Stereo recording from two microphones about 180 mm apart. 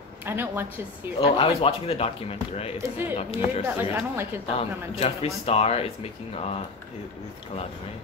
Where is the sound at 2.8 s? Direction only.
10° right (ahead or behind).